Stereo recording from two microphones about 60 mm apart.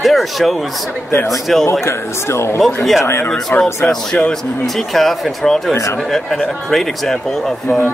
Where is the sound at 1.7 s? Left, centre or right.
Left.